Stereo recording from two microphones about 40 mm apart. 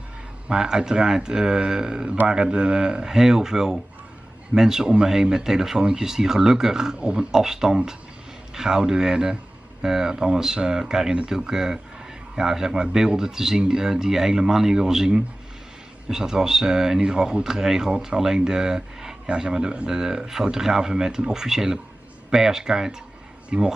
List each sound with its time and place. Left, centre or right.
0.5 s a man's voice: centre
7.0 s a man's voice: right
7.2 s a man's voice: centre